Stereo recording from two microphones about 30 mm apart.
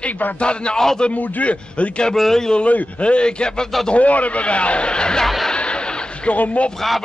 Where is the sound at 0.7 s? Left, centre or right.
Centre.